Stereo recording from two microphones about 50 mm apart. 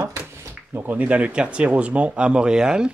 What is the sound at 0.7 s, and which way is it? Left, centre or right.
Speech, right.